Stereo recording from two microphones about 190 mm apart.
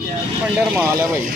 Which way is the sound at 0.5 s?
10° right (ahead or behind).